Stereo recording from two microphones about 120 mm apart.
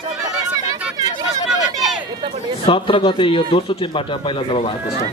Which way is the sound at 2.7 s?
45° left (ahead or behind).